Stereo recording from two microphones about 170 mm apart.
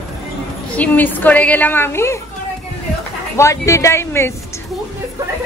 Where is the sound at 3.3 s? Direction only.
15° left (ahead or behind).